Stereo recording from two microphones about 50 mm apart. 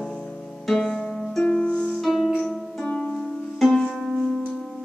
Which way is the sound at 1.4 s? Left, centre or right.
Left.